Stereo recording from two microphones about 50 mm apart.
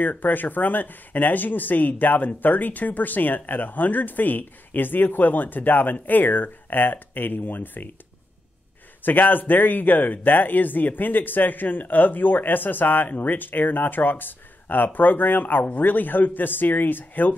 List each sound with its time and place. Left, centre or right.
0.0 s speech: left
9.0 s speech: left